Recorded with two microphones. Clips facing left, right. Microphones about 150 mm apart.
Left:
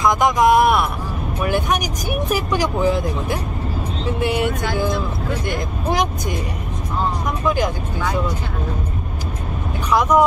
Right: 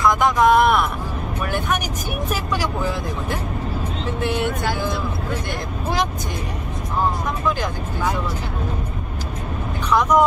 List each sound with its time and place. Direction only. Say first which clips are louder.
0.0 s speech: left 1 dB; 15° left (ahead or behind)
7.4 s speech: left 5 dB; 15° left (ahead or behind)
9.8 s speech: left 1 dB; 10° left (ahead or behind)